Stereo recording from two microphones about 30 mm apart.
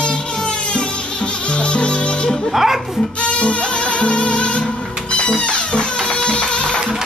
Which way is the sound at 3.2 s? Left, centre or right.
Left.